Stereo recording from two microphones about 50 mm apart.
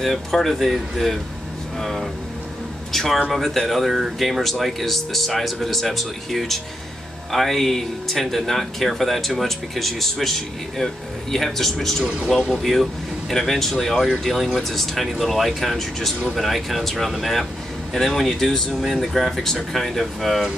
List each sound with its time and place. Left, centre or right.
0.0 s speech: centre
12.1 s speech: centre
13.3 s speech: centre
14.6 s speech: centre